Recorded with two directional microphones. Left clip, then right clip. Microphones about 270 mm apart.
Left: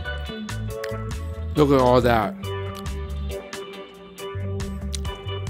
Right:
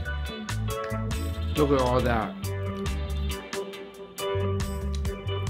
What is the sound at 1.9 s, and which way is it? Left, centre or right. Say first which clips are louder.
Music: left 7 dB; left.